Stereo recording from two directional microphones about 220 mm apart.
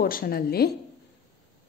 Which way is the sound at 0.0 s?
40° left (ahead or behind).